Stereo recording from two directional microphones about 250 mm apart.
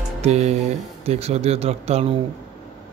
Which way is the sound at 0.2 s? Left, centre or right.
Right.